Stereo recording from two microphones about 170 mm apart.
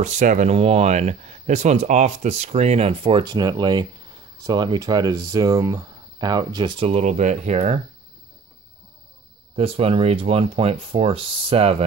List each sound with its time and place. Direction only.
0.0 s speech: 45° right (ahead or behind)
9.6 s speech: 35° right (ahead or behind)